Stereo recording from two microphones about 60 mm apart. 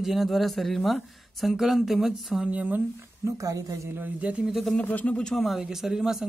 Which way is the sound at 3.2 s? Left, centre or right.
Right.